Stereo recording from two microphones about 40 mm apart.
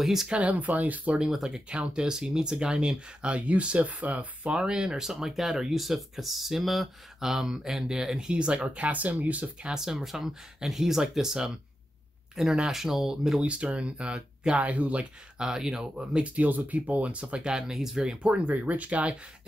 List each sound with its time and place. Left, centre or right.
0.0 s speech: centre
0.3 s speech: right
1.5 s speech: right
4.6 s speech: centre
8.7 s speech: right
9.8 s speech: centre
13.4 s speech: right
15.3 s speech: centre
16.3 s speech: right; by 18.3 s centre
18.3 s speech: right